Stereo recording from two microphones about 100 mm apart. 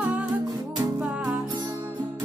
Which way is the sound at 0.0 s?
15° right (ahead or behind).